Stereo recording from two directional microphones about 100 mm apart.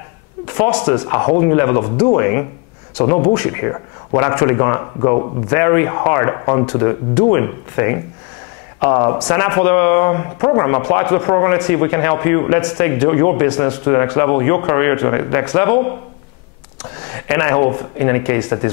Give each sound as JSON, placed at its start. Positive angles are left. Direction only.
{"t": 0.7, "sound": "speech", "side_deg": 10}
{"t": 1.0, "sound": "speech", "side_deg": 25}
{"t": 17.1, "sound": "speech", "side_deg": 20}